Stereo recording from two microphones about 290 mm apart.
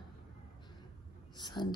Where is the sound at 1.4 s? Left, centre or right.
Centre.